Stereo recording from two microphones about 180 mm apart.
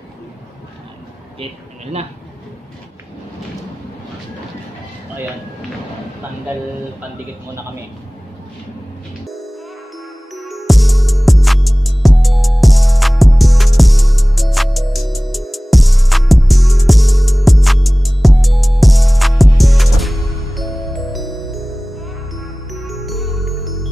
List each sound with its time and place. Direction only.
1.4 s speech: 35° right (ahead or behind)
10.3 s music: centre (ahead or behind)